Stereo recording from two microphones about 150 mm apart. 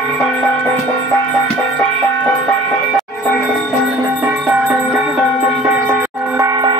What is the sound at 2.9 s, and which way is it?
Music, 10° left (ahead or behind).